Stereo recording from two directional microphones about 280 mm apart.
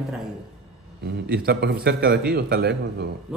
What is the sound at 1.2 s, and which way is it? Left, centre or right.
A man's voice, right.